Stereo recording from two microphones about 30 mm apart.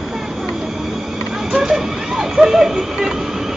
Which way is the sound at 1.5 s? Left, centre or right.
Centre.